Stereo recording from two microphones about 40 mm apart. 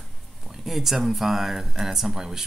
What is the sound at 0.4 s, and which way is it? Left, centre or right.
Speech, centre.